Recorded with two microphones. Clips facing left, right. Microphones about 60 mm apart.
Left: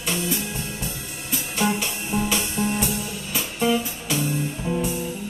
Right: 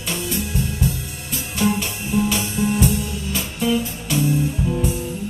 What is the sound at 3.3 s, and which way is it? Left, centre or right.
Music, centre.